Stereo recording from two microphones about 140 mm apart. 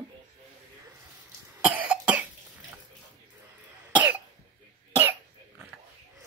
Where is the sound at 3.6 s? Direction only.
10° right (ahead or behind).